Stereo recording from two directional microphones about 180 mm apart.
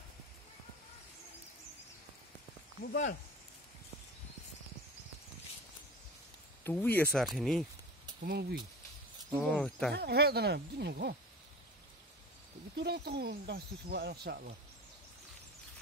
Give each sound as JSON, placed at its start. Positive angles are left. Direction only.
{"t": 6.6, "sound": "speech", "side_deg": 10}
{"t": 8.2, "sound": "speech", "side_deg": -60}
{"t": 9.3, "sound": "speech", "side_deg": 5}
{"t": 9.9, "sound": "speech", "side_deg": -65}
{"t": 12.7, "sound": "speech", "side_deg": -65}